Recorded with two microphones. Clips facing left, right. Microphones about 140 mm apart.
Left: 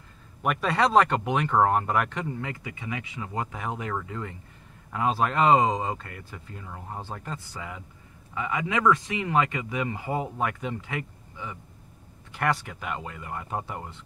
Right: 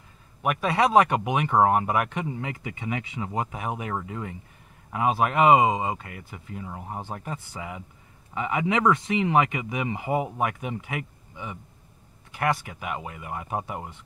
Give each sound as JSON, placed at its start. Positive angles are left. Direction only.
{"t": 0.4, "sound": "speech", "side_deg": -5}